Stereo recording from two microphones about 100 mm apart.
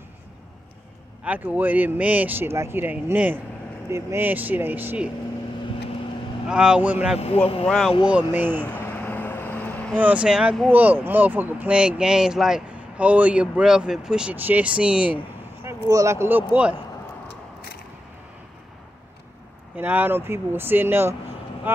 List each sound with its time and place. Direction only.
1.2 s speech: 15° right (ahead or behind)
6.5 s speech: 10° right (ahead or behind)
7.6 s speech: centre (ahead or behind)
8.3 s speech: 20° right (ahead or behind)
8.7 s vehicle: 20° left (ahead or behind)
9.9 s speech: 15° right (ahead or behind)
14.3 s speech: 20° right (ahead or behind)
15.6 s speech: 30° right (ahead or behind); by 16.7 s 15° right (ahead or behind)
19.7 s speech: 15° right (ahead or behind)